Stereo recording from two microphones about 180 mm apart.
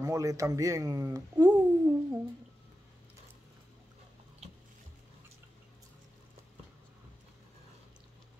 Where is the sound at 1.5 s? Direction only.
15° right (ahead or behind).